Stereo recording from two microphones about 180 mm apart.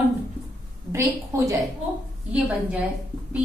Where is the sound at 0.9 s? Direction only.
15° right (ahead or behind).